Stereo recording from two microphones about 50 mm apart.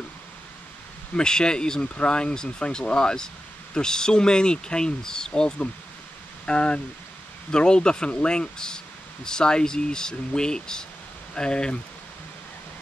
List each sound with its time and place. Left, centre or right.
1.1 s speech: centre